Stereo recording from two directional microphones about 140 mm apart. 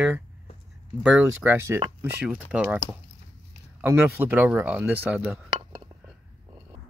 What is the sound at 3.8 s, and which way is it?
Speech, 15° right (ahead or behind).